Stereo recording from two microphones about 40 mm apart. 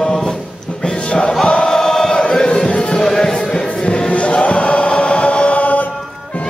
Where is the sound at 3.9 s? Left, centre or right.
Left.